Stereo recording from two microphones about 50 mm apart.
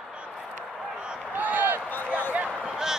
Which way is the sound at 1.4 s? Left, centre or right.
Right.